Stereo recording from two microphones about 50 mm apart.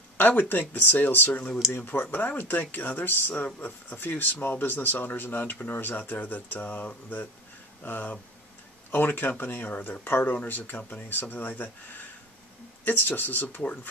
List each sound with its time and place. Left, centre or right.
0.2 s speech: left